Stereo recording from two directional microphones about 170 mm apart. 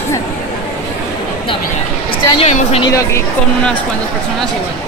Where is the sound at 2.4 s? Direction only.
35° left (ahead or behind).